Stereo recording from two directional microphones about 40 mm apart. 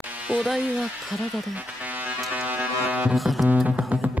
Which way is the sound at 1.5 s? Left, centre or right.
Right.